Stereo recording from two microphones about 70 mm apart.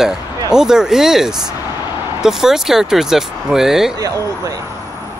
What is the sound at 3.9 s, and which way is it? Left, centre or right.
Speech, right.